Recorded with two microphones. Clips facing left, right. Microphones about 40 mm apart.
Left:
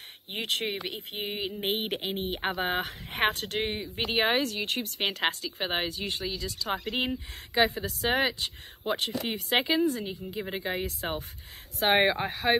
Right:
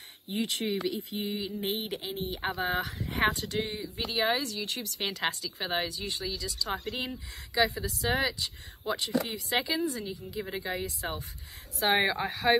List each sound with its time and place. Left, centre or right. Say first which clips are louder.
0.3 s speech: even; left
12.0 s speech: left 2 dB; left